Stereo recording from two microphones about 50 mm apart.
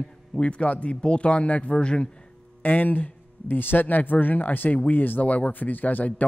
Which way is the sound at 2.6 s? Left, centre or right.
Left.